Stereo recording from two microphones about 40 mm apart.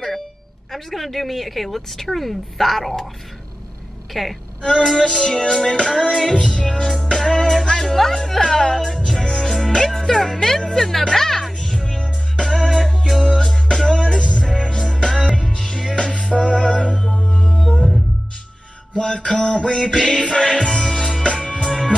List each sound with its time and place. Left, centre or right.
0.7 s a woman's voice: centre
4.1 s a woman's voice: centre
4.6 s speech: centre
4.8 s music: centre
9.4 s speech: centre
11.1 s music: centre
18.9 s a sound: left
20.0 s music: left